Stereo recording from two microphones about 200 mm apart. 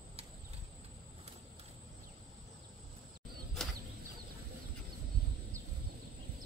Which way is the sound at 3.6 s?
5° left (ahead or behind).